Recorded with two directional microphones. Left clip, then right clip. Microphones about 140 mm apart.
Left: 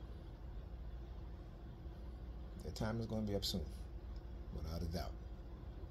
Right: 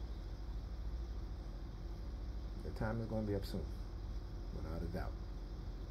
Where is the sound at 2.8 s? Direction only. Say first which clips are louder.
Right 2 dB; 75° left (ahead or behind).